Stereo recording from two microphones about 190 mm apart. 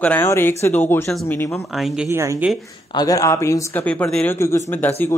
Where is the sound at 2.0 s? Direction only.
15° right (ahead or behind).